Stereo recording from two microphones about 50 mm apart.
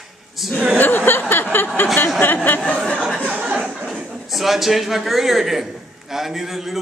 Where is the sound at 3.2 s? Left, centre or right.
Right.